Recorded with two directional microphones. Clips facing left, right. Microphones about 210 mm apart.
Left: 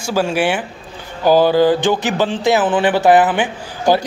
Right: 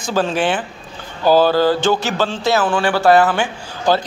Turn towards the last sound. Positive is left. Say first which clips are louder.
# left 2 dB
turn(degrees=15)  # may be behind; listen again after turning